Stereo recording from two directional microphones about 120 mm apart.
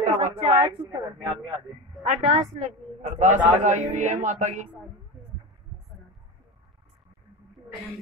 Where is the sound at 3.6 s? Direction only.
90° right.